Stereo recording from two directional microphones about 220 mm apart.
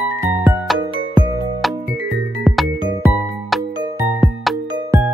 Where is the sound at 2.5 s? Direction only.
Centre (ahead or behind).